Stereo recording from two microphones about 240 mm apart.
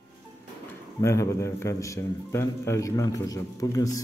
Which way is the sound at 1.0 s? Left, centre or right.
Centre.